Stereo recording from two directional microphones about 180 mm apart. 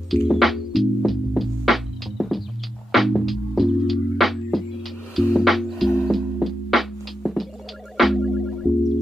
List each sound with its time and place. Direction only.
0.1 s music: centre (ahead or behind)